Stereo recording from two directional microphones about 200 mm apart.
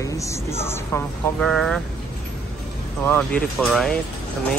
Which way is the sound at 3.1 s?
5° left (ahead or behind).